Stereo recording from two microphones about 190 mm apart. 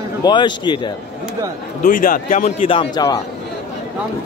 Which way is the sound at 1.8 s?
45° left (ahead or behind).